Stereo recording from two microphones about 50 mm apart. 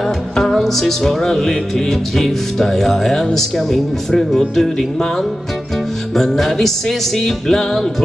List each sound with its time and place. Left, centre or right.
0.0 s music: centre